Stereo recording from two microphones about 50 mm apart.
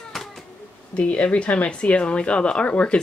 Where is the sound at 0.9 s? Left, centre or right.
Left.